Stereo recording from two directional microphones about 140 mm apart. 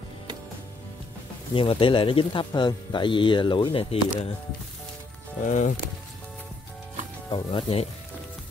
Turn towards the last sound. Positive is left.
turn(degrees=40)  # may be behind; listen again after turning